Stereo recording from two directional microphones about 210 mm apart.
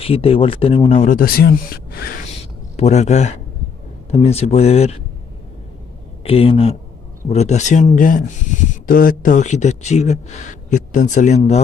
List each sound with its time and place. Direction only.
0.0 s speech: 25° left (ahead or behind); by 2.0 s 50° left (ahead or behind)
2.2 s a sound: 30° left (ahead or behind)
4.1 s speech: 30° left (ahead or behind)
6.2 s speech: 25° left (ahead or behind)